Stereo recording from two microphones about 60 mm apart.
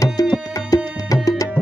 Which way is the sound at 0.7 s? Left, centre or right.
Left.